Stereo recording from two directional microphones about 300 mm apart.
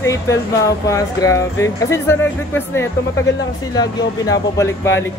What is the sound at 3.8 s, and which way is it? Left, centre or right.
Speech, centre.